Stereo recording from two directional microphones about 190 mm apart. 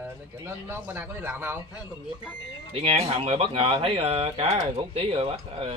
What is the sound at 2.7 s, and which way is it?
Speech, 30° right (ahead or behind).